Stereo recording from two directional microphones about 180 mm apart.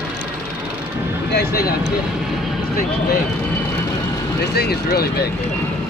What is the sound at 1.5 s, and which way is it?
Speech, 60° left (ahead or behind).